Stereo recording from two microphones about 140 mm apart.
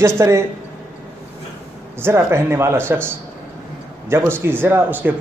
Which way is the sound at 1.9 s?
20° right (ahead or behind).